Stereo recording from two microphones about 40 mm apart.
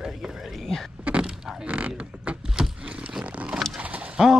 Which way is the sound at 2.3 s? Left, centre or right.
Right.